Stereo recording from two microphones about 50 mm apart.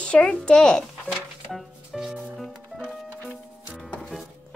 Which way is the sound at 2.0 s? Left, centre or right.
Centre.